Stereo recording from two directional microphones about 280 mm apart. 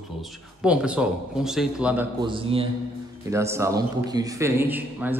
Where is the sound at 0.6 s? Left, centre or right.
Centre.